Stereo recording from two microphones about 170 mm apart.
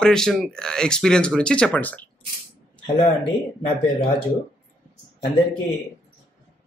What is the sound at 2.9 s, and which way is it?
Speech, 40° left (ahead or behind).